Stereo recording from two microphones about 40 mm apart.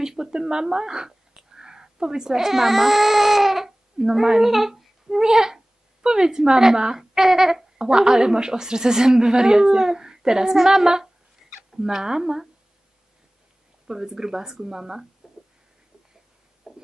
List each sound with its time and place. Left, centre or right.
0.0 s speech: centre
13.8 s speech: centre
16.6 s a sound: centre